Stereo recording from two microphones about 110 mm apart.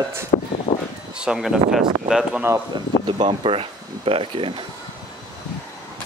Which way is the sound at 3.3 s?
60° right (ahead or behind).